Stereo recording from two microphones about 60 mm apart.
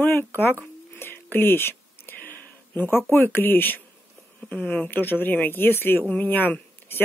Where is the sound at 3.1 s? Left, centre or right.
Left.